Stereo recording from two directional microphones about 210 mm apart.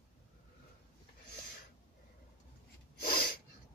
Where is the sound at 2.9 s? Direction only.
45° left (ahead or behind).